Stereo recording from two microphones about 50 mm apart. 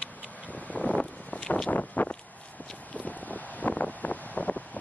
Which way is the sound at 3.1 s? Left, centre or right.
Left.